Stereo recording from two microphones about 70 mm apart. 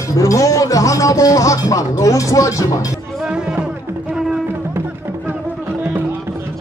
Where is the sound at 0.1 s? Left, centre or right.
Left.